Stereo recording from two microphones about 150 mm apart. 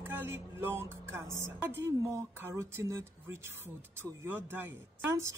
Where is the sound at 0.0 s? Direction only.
15° right (ahead or behind).